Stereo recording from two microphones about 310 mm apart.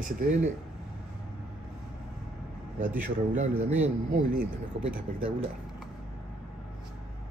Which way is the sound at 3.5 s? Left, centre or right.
Centre.